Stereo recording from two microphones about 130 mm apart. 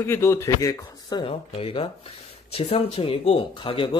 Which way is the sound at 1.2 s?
45° left (ahead or behind).